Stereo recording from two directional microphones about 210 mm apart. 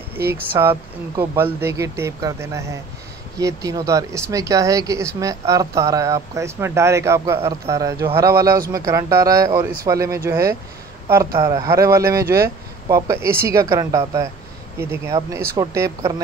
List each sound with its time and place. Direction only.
0.5 s speech: 10° right (ahead or behind)